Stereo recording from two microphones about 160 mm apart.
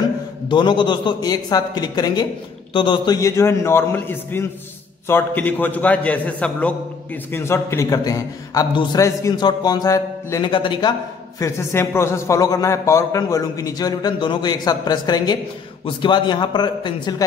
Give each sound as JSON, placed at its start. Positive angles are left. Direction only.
{"t": 0.5, "sound": "a man's voice", "side_deg": 30}